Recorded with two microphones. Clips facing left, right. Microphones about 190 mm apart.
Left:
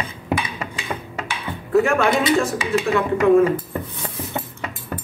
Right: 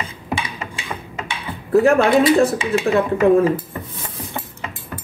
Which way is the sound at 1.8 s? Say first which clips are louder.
Right 5 dB; 35° right (ahead or behind).